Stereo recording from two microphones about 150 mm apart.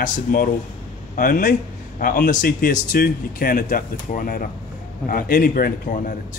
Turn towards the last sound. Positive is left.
turn(degrees=65)  # may be behind; listen again after turning